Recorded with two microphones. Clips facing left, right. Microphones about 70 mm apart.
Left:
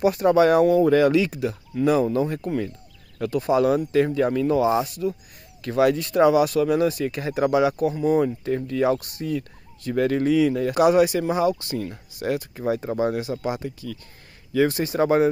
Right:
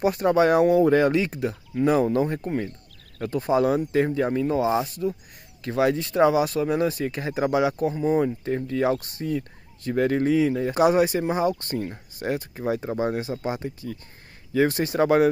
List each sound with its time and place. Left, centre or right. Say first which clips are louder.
0.0 s speech: left 2 dB; right